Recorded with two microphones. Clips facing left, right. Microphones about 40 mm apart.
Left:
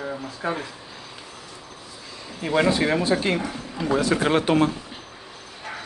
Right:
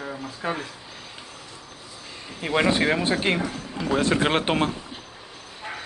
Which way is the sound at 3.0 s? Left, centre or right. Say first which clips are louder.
Left 1 dB; right.